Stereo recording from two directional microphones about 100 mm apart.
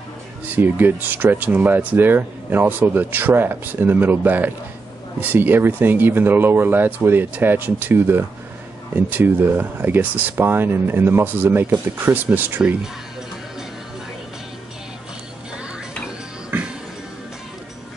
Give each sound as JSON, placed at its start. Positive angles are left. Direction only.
{"t": 0.5, "sound": "speech", "side_deg": -20}
{"t": 16.4, "sound": "music", "side_deg": -10}